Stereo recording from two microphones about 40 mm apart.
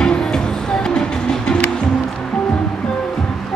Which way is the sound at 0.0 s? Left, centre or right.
Centre.